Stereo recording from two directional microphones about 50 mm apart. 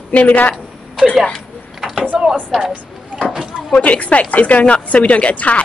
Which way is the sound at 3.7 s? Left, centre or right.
Left.